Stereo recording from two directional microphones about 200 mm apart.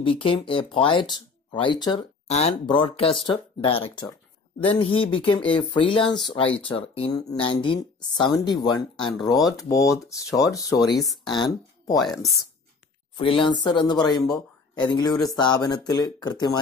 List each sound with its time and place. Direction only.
0.0 s speech: 25° left (ahead or behind)
4.8 s speech: 90° left
5.1 s speech: 25° left (ahead or behind)
6.0 s speech: centre (ahead or behind)
6.9 s speech: 25° left (ahead or behind)
13.2 s speech: 25° left (ahead or behind)